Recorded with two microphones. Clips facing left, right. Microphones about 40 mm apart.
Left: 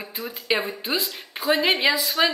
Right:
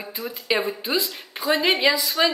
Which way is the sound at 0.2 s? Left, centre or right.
Centre.